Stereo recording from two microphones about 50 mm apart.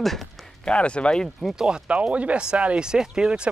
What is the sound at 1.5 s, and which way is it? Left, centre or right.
Speech, centre.